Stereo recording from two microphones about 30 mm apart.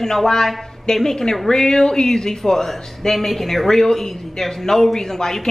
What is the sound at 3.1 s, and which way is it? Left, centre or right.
A man's voice, centre.